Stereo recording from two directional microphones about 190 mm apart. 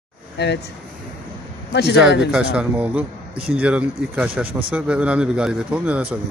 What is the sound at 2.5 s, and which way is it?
A man's voice, 5° right (ahead or behind).